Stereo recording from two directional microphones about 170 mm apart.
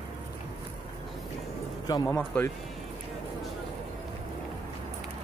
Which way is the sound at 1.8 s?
20° left (ahead or behind).